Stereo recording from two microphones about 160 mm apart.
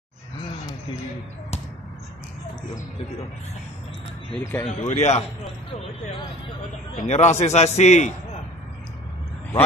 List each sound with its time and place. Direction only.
4.4 s speech: 15° left (ahead or behind)
4.6 s a man's voice: 45° left (ahead or behind)
7.0 s a man's voice: 45° left (ahead or behind)